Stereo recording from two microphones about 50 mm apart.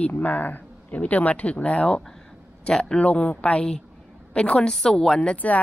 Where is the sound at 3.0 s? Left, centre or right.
Left.